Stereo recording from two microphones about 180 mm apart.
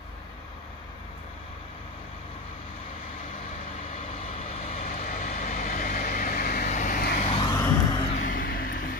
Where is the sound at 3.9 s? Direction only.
35° left (ahead or behind).